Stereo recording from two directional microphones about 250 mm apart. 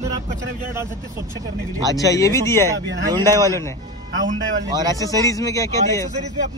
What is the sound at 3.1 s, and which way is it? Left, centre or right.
Speech, centre.